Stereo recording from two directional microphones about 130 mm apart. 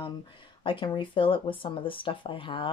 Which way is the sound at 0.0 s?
40° left (ahead or behind).